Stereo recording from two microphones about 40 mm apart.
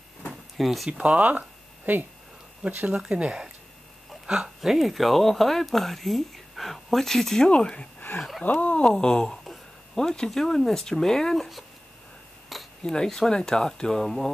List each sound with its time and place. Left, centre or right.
0.6 s speech: centre
0.9 s speech: right
1.9 s speech: right
2.6 s speech: right
4.3 s speech: centre
7.4 s a sound: left
8.2 s speech: centre
8.5 s speech: left
8.8 s a sound: left
9.9 s speech: centre
12.5 s cutlery: centre
12.8 s speech: centre